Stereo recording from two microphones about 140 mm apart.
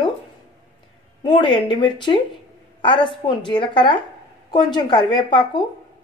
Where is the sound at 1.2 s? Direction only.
35° left (ahead or behind).